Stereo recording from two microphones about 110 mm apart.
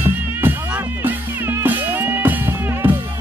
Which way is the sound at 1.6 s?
15° right (ahead or behind).